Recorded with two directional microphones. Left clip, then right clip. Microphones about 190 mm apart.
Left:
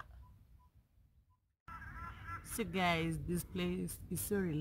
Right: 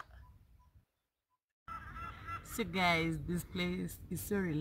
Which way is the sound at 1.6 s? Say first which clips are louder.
Right 4 dB; 60° right (ahead or behind).